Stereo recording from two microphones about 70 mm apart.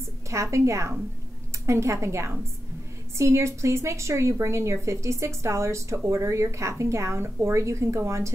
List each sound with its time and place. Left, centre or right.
0.3 s a woman's voice: right